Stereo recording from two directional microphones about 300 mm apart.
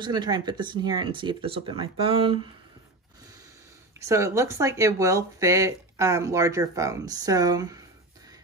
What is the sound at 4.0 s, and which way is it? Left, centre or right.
Speech, centre.